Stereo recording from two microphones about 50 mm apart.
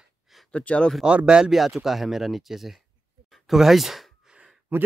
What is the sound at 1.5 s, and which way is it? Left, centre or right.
Speech, centre.